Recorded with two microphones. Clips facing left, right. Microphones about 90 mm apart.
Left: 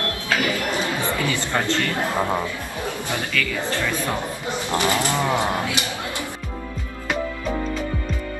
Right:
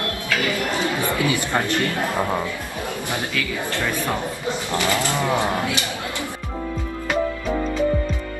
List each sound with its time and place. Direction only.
0.3 s a sound: 20° left (ahead or behind)
0.6 s chatter: 20° right (ahead or behind)
1.1 s speech: 15° right (ahead or behind)
2.1 s speech: 20° left (ahead or behind)
3.1 s speech: 20° right (ahead or behind)
4.6 s speech: 20° left (ahead or behind)